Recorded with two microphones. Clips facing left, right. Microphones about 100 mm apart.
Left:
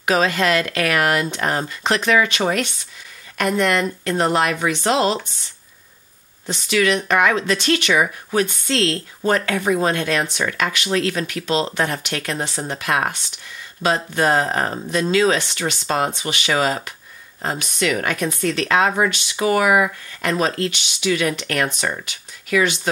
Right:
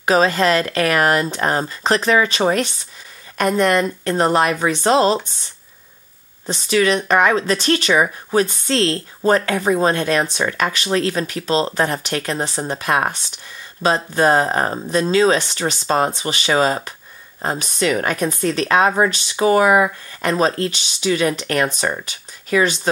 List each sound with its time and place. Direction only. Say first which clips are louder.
0.0 s speech: right 3 dB; 35° right (ahead or behind)
6.4 s speech: right 2 dB; 35° right (ahead or behind)